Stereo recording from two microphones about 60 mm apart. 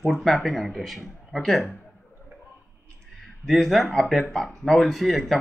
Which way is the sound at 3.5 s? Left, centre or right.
Centre.